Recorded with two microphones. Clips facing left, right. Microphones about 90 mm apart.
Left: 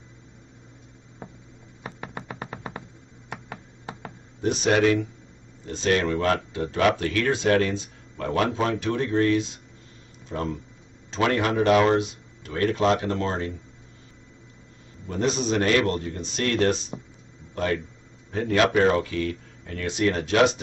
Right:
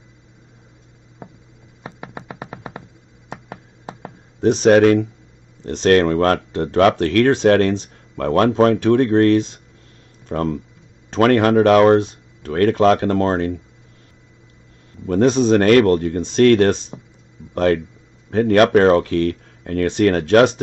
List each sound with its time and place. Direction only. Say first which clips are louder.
1.8 s music: right 3 dB; 10° right (ahead or behind)
3.3 s a sound: right 4 dB; 15° right (ahead or behind)
4.4 s speech: right 9 dB; 50° right (ahead or behind)
5.7 s speech: right 9 dB; 65° right (ahead or behind)
15.0 s speech: right 10 dB; 60° right (ahead or behind)
16.9 s speech: even; centre (ahead or behind)
18.3 s speech: right 8 dB; 60° right (ahead or behind)